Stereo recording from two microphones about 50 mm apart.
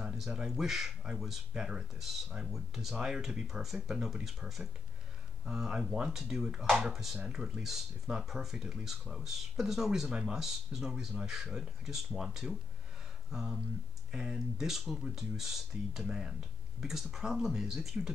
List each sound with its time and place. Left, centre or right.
0.2 s speech: centre
5.8 s speech: centre
6.9 s speech: centre
7.2 s speech: centre